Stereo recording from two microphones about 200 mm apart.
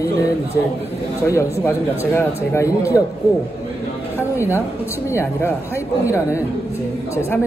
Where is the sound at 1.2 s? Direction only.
15° left (ahead or behind).